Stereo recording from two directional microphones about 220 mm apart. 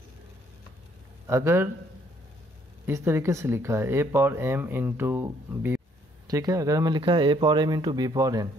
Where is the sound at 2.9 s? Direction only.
10° right (ahead or behind).